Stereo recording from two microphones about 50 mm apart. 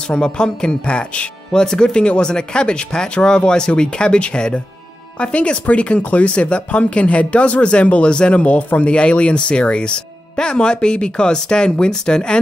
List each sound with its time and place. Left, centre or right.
0.1 s speech: centre
1.5 s speech: centre